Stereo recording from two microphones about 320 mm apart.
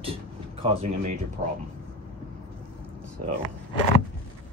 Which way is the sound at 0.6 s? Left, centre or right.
Centre.